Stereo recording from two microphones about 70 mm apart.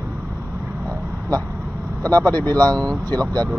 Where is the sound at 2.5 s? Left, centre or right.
Right.